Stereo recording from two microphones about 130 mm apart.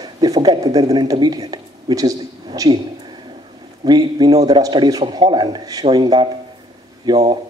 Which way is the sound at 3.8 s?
30° right (ahead or behind).